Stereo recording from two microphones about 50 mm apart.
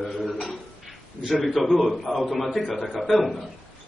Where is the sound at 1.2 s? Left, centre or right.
Centre.